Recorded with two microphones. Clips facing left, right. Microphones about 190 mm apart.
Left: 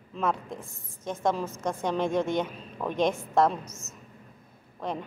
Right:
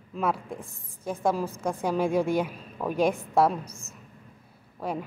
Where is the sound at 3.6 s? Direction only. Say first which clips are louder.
Even; 30° right (ahead or behind).